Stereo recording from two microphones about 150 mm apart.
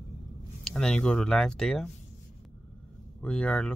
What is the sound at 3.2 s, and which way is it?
Speech, 5° left (ahead or behind).